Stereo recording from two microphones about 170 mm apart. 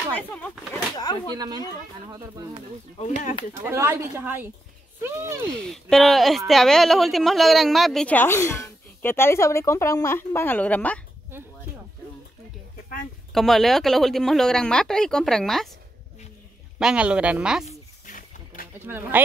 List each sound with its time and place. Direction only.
0.1 s speech: 10° left (ahead or behind)
0.9 s speech: 25° left (ahead or behind)
1.3 s speech: 25° right (ahead or behind)
3.6 s speech: 15° right (ahead or behind)
5.5 s speech: 5° left (ahead or behind)
13.3 s speech: centre (ahead or behind)
16.7 s speech: 5° right (ahead or behind)
17.6 s a sound: 50° left (ahead or behind)
18.9 s speech: 10° right (ahead or behind)